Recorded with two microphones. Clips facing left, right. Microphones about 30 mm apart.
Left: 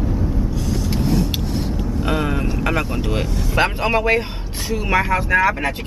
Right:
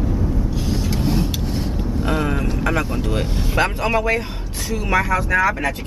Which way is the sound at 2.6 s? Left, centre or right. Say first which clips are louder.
Right 1 dB; centre.